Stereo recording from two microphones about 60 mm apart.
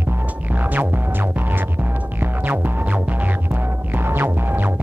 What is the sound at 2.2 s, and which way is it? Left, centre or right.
Music, right.